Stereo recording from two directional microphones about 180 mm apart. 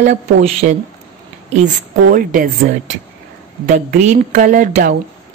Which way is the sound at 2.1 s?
50° right (ahead or behind).